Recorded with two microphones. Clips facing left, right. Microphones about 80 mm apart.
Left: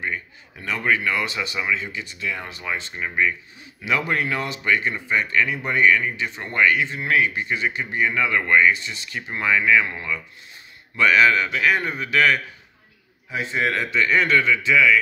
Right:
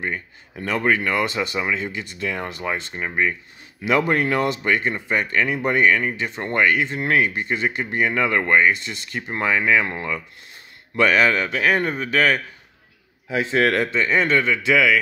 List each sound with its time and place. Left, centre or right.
0.0 s speech: right
13.3 s a man's voice: right
13.9 s speech: right
14.6 s a man's voice: right